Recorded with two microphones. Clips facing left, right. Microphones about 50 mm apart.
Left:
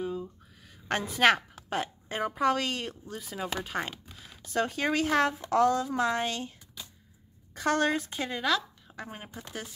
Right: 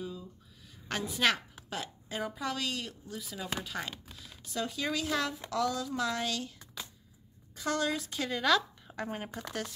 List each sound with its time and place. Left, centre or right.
0.0 s a sound: left
0.8 s a woman's voice: left
4.5 s speech: left
7.5 s speech: left
8.4 s speech: centre